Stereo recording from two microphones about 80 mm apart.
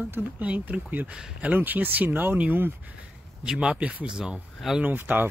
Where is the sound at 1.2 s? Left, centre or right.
Centre.